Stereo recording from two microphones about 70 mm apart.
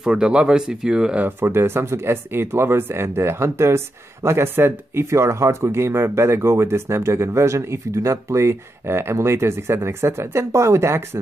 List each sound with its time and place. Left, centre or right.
0.0 s speech: centre
1.2 s speech: right